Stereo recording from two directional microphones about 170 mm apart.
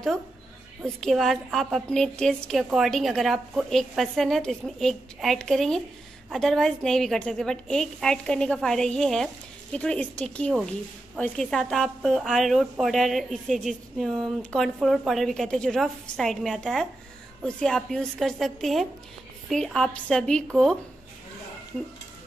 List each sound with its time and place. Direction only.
0.8 s a woman's voice: centre (ahead or behind)